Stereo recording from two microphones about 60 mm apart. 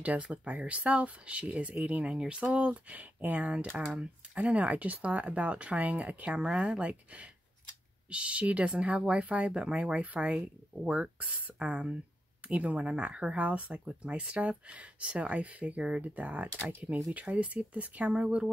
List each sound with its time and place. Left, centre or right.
0.0 s speech: right